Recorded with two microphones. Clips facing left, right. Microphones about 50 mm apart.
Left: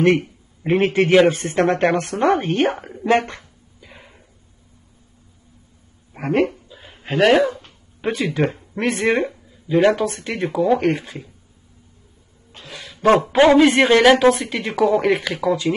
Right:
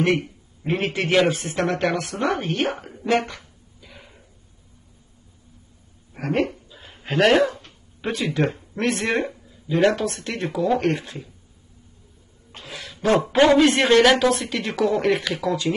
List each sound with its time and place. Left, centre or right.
0.7 s a woman's voice: left
2.2 s a woman's voice: left
6.1 s speech: left
6.5 s a sound: centre
8.0 s speech: centre
12.6 s a sound: centre
13.2 s speech: centre